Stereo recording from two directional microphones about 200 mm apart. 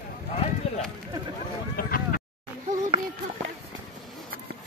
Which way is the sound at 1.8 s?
45° left (ahead or behind).